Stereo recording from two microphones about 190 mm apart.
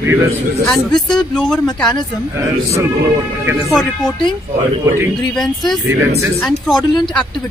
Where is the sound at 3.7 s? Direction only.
Centre (ahead or behind).